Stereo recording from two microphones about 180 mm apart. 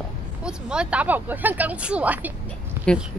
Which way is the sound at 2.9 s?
5° left (ahead or behind).